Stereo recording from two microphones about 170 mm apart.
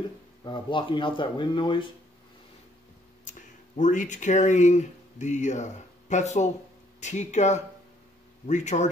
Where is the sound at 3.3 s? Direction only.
45° left (ahead or behind).